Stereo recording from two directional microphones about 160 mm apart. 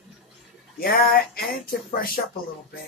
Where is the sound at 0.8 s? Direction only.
70° left (ahead or behind).